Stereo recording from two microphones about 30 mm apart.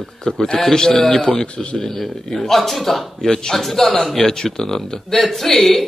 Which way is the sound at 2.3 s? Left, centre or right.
Centre.